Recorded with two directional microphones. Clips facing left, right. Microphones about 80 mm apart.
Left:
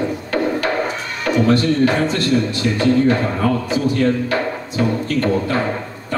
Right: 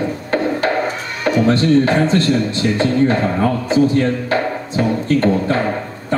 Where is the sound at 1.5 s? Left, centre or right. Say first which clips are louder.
Right 2 dB; right.